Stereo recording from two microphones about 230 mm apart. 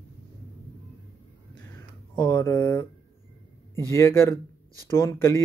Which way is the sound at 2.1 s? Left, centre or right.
Centre.